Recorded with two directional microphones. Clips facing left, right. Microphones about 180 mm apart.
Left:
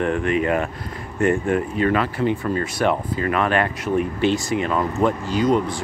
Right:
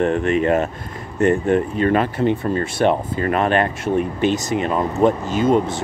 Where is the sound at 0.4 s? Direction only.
30° right (ahead or behind).